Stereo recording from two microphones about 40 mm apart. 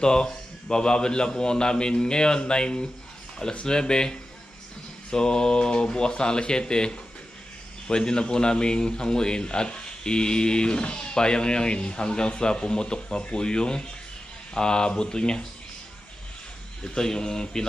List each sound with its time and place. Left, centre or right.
0.0 s a man's voice: centre
16.8 s a man's voice: centre